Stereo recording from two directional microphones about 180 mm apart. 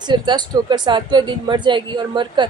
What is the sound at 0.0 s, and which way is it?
A woman's voice, 25° right (ahead or behind).